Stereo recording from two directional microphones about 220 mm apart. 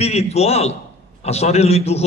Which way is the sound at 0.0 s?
30° left (ahead or behind).